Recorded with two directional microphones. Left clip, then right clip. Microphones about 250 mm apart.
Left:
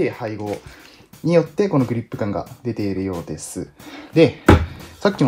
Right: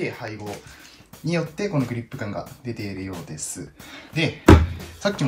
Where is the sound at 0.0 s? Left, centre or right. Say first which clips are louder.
Left 7 dB; left.